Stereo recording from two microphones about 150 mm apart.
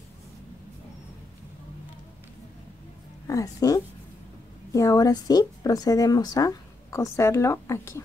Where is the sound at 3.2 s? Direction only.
20° left (ahead or behind).